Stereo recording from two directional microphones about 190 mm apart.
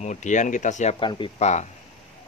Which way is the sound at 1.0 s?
25° left (ahead or behind).